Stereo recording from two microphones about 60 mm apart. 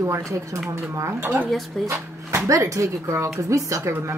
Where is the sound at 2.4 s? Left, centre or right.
Right.